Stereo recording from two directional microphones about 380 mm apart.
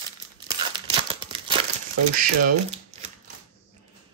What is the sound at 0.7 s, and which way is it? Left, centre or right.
Crumpling, centre.